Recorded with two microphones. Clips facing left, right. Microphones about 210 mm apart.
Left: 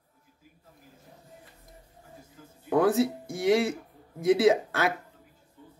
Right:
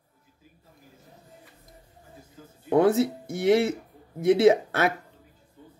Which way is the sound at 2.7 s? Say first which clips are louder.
Right 3 dB; 25° right (ahead or behind).